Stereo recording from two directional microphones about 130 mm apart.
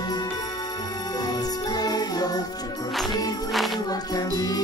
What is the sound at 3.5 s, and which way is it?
Music, centre (ahead or behind).